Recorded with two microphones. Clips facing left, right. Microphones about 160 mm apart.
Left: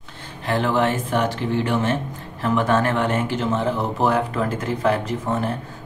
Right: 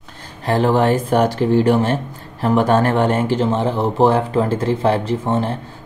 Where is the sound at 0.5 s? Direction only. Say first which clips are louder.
Right 5 dB; 35° right (ahead or behind).